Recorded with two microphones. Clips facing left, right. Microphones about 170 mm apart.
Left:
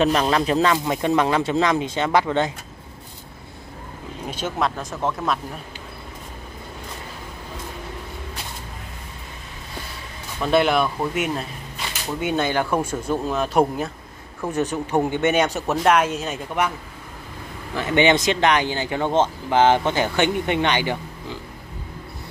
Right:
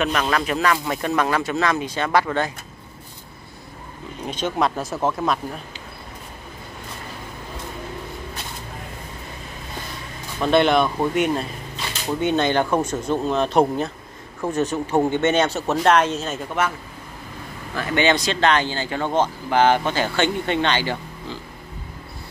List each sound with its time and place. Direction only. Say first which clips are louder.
0.0 s speech: left 3 dB; 30° left (ahead or behind)
4.3 s speech: right 2 dB; 5° left (ahead or behind)
10.4 s speech: right 2 dB; 5° left (ahead or behind)
11.7 s a sound: right 3 dB; 10° left (ahead or behind)
12.7 s speech: right 1 dB; 10° left (ahead or behind)
17.7 s speech: left 2 dB; 20° left (ahead or behind)